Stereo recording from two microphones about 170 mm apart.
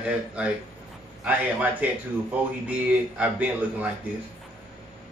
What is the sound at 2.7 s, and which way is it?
A man's voice, 10° right (ahead or behind).